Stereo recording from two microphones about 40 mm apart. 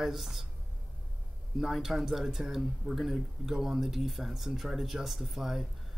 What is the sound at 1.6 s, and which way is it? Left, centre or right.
Speech, centre.